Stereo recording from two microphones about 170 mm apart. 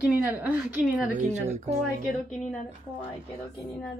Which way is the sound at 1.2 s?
45° right (ahead or behind).